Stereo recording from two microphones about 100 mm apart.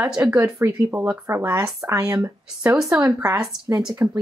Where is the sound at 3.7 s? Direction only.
30° right (ahead or behind).